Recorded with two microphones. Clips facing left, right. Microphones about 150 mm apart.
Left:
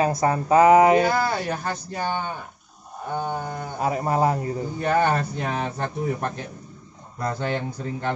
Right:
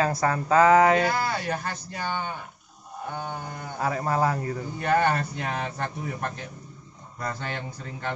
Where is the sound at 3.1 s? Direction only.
35° left (ahead or behind).